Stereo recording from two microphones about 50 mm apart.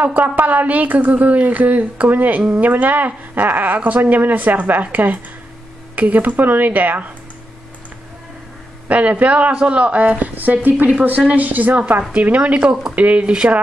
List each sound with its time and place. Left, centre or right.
0.0 s a woman's voice: right
8.8 s a woman's voice: right